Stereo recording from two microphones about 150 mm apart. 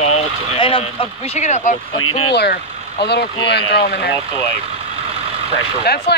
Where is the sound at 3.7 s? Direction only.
90° left.